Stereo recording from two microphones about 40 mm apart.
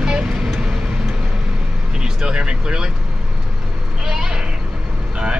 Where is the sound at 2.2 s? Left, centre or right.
Right.